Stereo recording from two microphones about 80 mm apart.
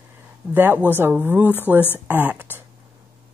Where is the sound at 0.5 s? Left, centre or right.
Right.